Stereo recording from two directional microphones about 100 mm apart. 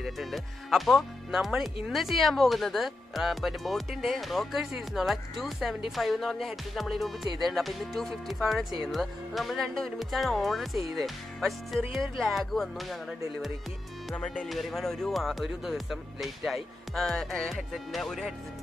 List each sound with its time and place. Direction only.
0.0 s speech: centre (ahead or behind)
14.1 s speech: 10° left (ahead or behind)